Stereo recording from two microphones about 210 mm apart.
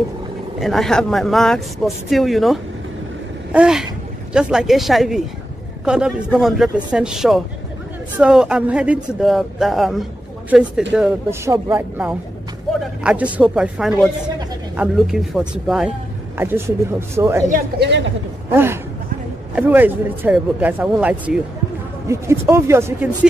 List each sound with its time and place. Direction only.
0.6 s speech: centre (ahead or behind)
17.5 s speech: 50° right (ahead or behind)
18.5 s a man's voice: 10° right (ahead or behind)